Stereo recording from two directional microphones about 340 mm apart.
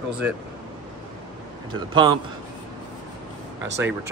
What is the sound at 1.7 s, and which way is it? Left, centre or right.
Speech, centre.